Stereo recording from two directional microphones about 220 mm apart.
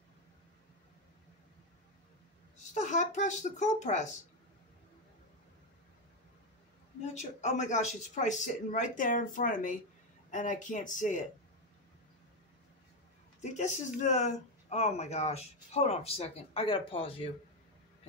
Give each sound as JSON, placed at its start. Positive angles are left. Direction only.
{"t": 2.7, "sound": "speech", "side_deg": 35}
{"t": 7.2, "sound": "speech", "side_deg": 30}
{"t": 13.4, "sound": "speech", "side_deg": 30}